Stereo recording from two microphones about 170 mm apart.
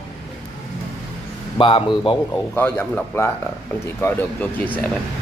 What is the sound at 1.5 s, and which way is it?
Speech, 30° left (ahead or behind).